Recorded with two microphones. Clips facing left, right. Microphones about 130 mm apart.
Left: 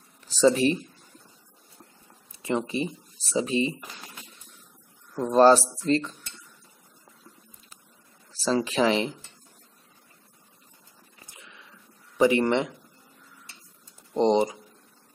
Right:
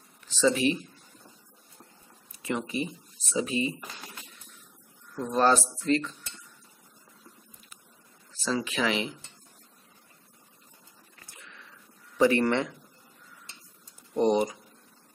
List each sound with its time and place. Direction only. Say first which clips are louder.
0.3 s speech: left 4 dB; 40° left (ahead or behind)
2.3 s speech: left 3 dB; 30° left (ahead or behind)
5.1 s speech: left 6 dB; 30° left (ahead or behind)
8.3 s speech: left 5 dB; 35° left (ahead or behind)
11.2 s a sound: even; 20° left (ahead or behind)
12.2 s speech: left 2 dB; 20° left (ahead or behind)
14.1 s speech: left 2 dB; 25° left (ahead or behind)